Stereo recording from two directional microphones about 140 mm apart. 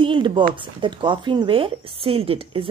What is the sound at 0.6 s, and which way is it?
A woman's voice, 35° right (ahead or behind).